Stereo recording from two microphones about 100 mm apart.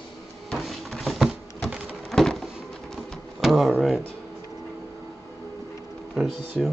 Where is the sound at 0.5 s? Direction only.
Centre (ahead or behind).